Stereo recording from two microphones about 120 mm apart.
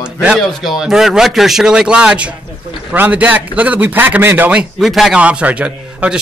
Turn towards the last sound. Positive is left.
turn(degrees=-10)  # may be behind; listen again after turning